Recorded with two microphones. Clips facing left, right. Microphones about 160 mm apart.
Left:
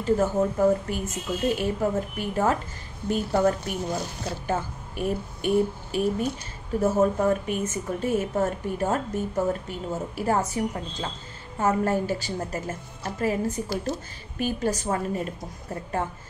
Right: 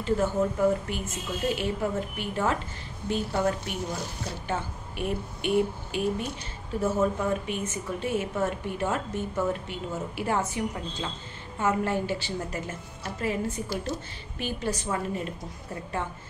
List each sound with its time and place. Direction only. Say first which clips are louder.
0.0 s a woman's voice: left 3 dB; 40° left (ahead or behind)